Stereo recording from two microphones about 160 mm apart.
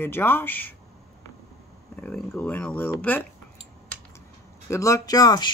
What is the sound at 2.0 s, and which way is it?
Speech, 10° left (ahead or behind).